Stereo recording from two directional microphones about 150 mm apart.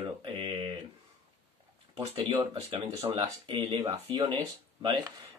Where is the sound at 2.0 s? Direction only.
30° right (ahead or behind).